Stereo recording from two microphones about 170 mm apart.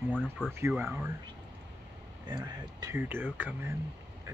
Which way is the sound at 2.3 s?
25° right (ahead or behind).